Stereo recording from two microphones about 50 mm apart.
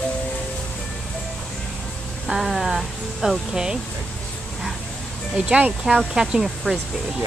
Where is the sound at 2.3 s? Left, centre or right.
Centre.